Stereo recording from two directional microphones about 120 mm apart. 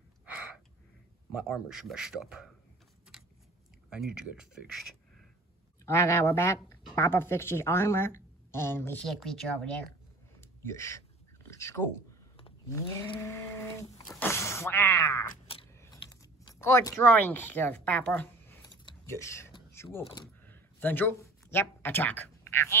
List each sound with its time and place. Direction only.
1.4 s speech: 5° right (ahead or behind)
3.9 s speech: 5° right (ahead or behind)
5.9 s a woman's voice: 20° left (ahead or behind)
9.0 s speech: centre (ahead or behind)
10.6 s a sound: 25° left (ahead or behind)
12.6 s cat: 25° left (ahead or behind)
14.2 s a sound: 20° left (ahead or behind)
15.7 s mechanisms: 20° left (ahead or behind)
16.5 s speech: 25° left (ahead or behind)
19.0 s speech: 25° left (ahead or behind)
19.7 s door: 20° left (ahead or behind)
20.4 s a sound: 15° left (ahead or behind)